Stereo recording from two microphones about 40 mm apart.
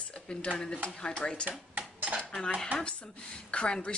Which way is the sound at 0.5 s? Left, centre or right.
Left.